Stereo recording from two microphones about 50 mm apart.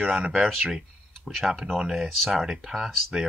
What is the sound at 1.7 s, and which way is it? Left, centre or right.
Speech, centre.